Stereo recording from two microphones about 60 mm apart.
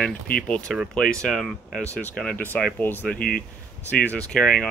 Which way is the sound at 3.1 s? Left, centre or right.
Centre.